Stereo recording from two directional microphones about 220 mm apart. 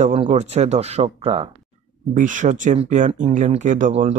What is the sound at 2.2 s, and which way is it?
Speech, 35° right (ahead or behind).